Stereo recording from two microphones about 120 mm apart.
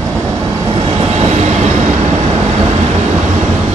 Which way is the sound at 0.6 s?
50° right (ahead or behind).